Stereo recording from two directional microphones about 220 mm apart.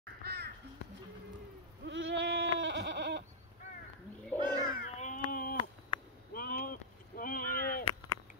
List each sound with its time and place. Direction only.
0.2 s crow: 45° right (ahead or behind)
1.9 s goat: 55° right (ahead or behind)
4.4 s a sound: 20° right (ahead or behind)
4.7 s baby cry: 35° left (ahead or behind)
5.3 s a sound: 40° left (ahead or behind)
6.3 s chop: 40° left (ahead or behind)